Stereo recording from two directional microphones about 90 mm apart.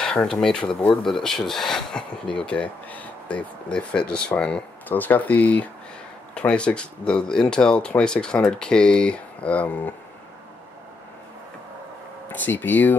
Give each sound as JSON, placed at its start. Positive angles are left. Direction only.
{"t": 0.0, "sound": "speech", "side_deg": 10}
{"t": 12.3, "sound": "speech", "side_deg": 20}